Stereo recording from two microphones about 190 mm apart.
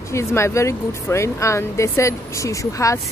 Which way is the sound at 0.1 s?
15° left (ahead or behind).